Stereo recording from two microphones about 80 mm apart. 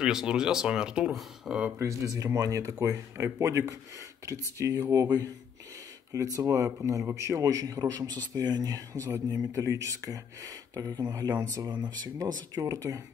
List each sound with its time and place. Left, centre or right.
0.0 s speech: centre
1.8 s speech: right
5.0 s speech: right
6.1 s speech: right